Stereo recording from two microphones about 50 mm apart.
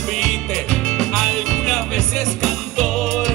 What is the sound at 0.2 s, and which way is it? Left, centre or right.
Music, centre.